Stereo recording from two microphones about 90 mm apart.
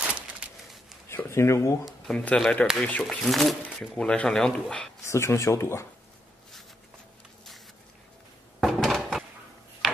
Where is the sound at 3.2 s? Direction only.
Centre (ahead or behind).